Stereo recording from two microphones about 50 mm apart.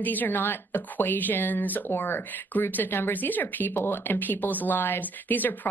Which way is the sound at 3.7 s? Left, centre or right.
Left.